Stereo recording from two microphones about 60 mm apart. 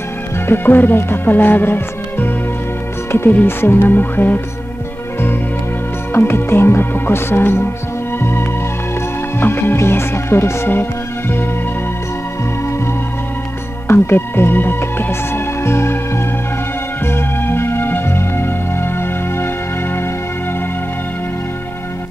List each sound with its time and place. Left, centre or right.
0.5 s speech: left
6.1 s speech: left
8.2 s music: left
9.4 s speech: left
13.8 s music: left
17.0 s music: left